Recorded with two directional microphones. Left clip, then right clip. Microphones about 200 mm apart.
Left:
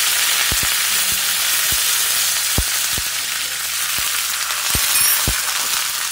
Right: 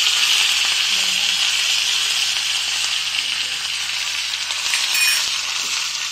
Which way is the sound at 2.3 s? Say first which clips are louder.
Right 1 dB; 15° left (ahead or behind).